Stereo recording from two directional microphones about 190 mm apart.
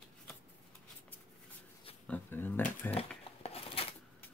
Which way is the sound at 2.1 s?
10° left (ahead or behind).